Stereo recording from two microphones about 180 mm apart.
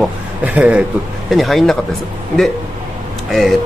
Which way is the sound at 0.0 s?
10° right (ahead or behind).